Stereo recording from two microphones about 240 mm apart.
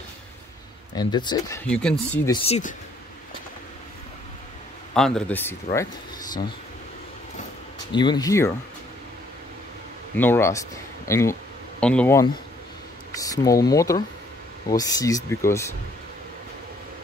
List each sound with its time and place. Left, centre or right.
0.9 s speech: centre
1.7 s speech: centre
2.3 s speech: left
4.9 s speech: centre
7.9 s speech: centre
10.1 s speech: centre